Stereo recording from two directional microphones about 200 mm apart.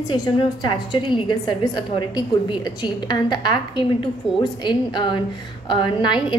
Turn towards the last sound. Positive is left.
turn(degrees=20)  # may be behind; listen again after turning